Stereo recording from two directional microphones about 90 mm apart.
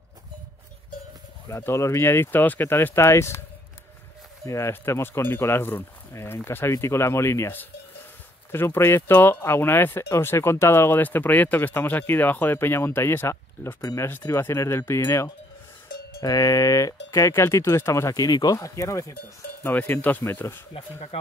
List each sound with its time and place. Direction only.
1.6 s speech: 30° left (ahead or behind)
4.5 s speech: 30° left (ahead or behind)
13.7 s speech: 40° left (ahead or behind)
14.0 s speech: 30° left (ahead or behind)
16.2 s speech: 40° left (ahead or behind)
18.1 s speech: 45° left (ahead or behind)
19.6 s speech: 20° left (ahead or behind)